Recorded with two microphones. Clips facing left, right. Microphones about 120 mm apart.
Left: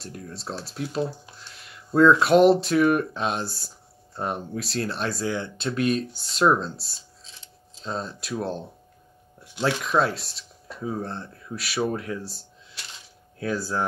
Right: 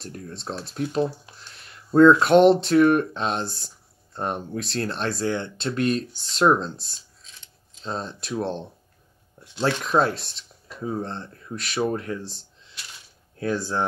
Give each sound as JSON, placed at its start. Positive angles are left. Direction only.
{"t": 0.0, "sound": "speech", "side_deg": 5}
{"t": 6.8, "sound": "mechanisms", "side_deg": 35}
{"t": 7.8, "sound": "speech", "side_deg": 0}
{"t": 9.8, "sound": "speech", "side_deg": 0}
{"t": 13.5, "sound": "speech", "side_deg": 5}